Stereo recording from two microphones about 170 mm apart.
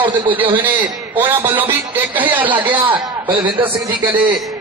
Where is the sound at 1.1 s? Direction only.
10° right (ahead or behind).